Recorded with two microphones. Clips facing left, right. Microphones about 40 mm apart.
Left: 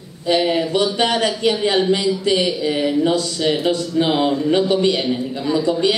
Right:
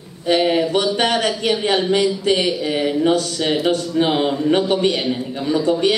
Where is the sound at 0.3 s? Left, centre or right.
Right.